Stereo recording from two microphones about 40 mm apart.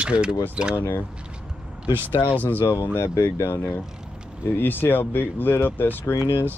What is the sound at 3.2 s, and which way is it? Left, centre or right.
Speech, left.